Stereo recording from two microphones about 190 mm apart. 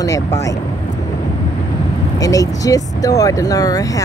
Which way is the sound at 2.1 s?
20° left (ahead or behind).